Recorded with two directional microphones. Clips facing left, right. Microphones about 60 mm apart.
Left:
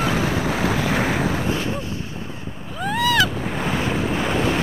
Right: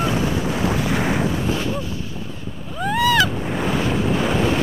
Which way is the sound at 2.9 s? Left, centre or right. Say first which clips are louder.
Right 2 dB; centre.